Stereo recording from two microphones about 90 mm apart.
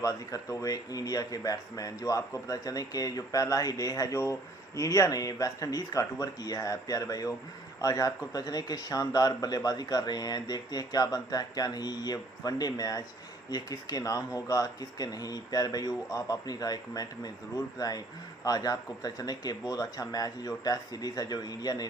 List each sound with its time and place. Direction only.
0.0 s speech: 40° left (ahead or behind)